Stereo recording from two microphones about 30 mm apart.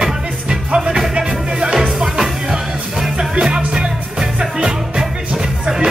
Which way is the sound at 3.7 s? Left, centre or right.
Right.